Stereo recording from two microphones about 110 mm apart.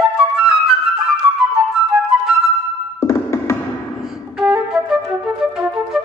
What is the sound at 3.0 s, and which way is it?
Music, 25° left (ahead or behind).